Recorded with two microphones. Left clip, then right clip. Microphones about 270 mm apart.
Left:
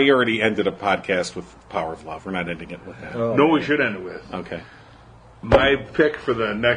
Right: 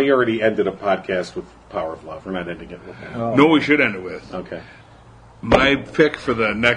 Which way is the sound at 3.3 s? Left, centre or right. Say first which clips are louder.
Right 4 dB; right.